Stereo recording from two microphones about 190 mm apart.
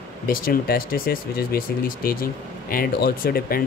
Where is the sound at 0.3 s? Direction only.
50° left (ahead or behind).